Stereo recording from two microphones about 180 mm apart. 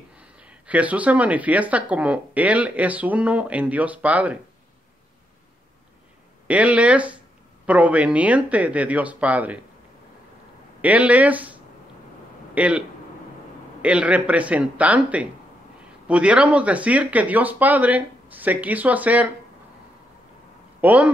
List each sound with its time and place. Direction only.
0.4 s speech: 5° right (ahead or behind)
6.4 s speech: 10° right (ahead or behind)
10.8 s speech: 10° right (ahead or behind)
12.5 s a man's voice: 10° right (ahead or behind)
13.8 s speech: 10° right (ahead or behind)
20.8 s speech: 10° right (ahead or behind)